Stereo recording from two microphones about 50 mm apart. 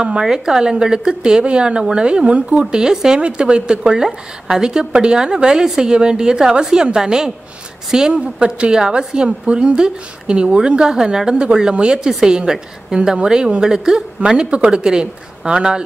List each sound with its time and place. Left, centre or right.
0.0 s a woman's voice: centre
2.5 s a woman's voice: centre
8.1 s a woman's voice: right